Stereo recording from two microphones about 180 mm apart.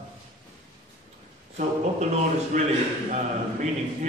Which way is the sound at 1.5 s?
40° right (ahead or behind).